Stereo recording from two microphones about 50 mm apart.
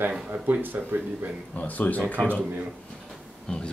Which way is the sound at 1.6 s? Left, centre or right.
Left.